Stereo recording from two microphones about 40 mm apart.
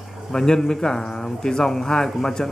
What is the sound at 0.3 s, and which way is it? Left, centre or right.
Speech, centre.